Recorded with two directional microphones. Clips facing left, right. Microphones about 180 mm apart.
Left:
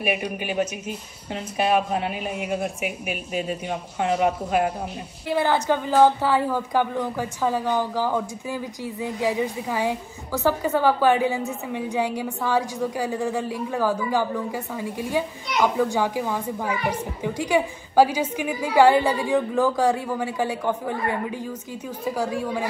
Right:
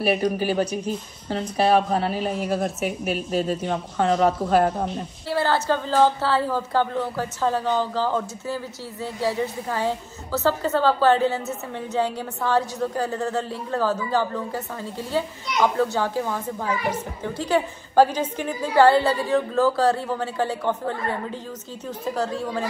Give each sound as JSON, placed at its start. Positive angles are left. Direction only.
{"t": 0.4, "sound": "a woman's voice", "side_deg": -35}
{"t": 5.3, "sound": "a woman's voice", "side_deg": 15}